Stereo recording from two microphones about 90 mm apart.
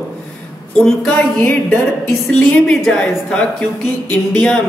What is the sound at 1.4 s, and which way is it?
Speech, 20° left (ahead or behind).